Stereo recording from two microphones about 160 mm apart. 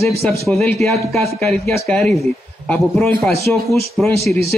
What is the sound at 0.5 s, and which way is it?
Speech, centre (ahead or behind).